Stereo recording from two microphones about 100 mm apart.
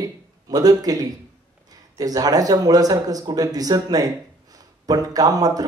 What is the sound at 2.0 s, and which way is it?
Speech, 40° right (ahead or behind).